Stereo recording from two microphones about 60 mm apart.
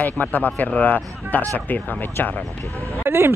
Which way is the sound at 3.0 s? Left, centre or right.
Right.